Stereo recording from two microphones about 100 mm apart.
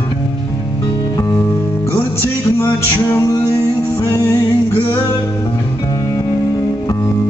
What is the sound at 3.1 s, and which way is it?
Music, 30° left (ahead or behind).